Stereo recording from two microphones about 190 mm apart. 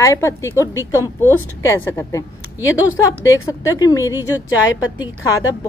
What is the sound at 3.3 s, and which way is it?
Speech, 15° left (ahead or behind).